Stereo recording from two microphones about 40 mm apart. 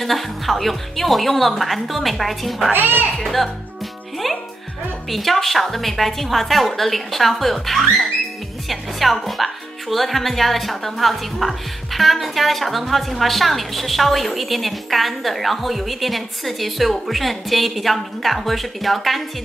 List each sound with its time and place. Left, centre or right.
0.0 s speech: centre
2.7 s speech: right
3.2 s speech: centre
5.1 s speech: centre